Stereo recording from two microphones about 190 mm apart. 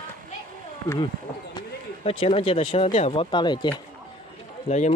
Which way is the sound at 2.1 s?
30° left (ahead or behind).